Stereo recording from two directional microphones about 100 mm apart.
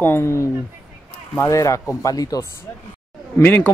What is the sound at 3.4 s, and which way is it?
Speech, 20° left (ahead or behind).